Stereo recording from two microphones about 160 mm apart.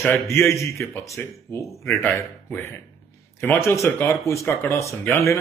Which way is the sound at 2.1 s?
Centre (ahead or behind).